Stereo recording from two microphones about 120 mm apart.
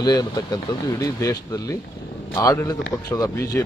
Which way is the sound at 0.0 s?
35° left (ahead or behind).